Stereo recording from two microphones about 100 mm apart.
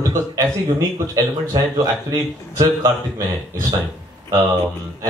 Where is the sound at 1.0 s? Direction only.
30° right (ahead or behind).